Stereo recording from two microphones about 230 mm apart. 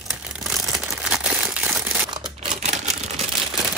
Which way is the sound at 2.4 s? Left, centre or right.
Right.